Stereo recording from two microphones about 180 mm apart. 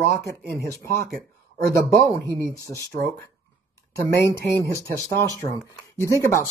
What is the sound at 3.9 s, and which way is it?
Speech, 55° right (ahead or behind).